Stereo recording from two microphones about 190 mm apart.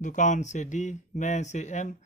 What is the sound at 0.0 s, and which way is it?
Speech, 40° left (ahead or behind).